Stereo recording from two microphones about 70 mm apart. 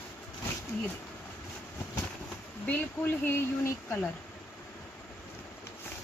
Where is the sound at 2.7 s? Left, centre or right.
Left.